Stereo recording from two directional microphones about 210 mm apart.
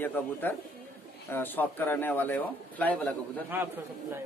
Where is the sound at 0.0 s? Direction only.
10° left (ahead or behind).